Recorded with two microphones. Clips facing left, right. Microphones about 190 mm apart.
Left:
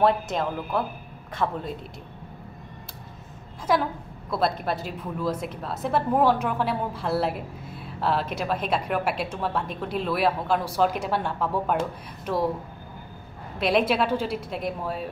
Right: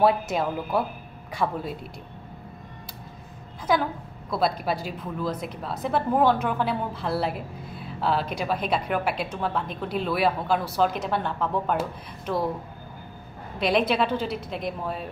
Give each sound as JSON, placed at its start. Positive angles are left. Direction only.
{"t": 0.0, "sound": "a woman's voice", "side_deg": -5}
{"t": 4.3, "sound": "a woman's voice", "side_deg": 0}
{"t": 13.6, "sound": "a woman's voice", "side_deg": 0}